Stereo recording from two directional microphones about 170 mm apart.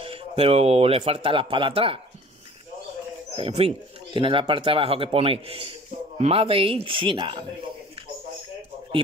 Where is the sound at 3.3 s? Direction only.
35° right (ahead or behind).